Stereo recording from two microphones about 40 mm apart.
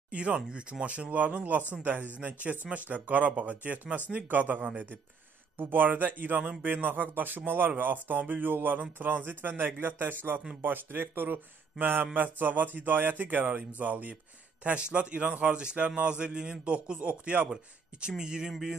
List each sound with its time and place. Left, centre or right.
0.1 s speech: right
15.0 s a man's voice: right
18.0 s a man's voice: right